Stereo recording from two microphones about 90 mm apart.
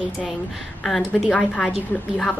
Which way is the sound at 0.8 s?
Centre (ahead or behind).